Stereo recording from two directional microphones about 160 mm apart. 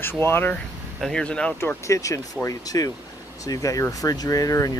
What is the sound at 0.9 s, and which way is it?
Speech, 5° left (ahead or behind).